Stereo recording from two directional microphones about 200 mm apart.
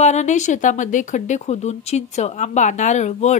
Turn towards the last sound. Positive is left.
turn(degrees=35)  # may be behind; listen again after turning